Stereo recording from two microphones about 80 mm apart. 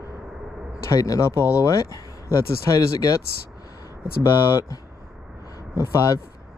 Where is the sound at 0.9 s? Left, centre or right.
Left.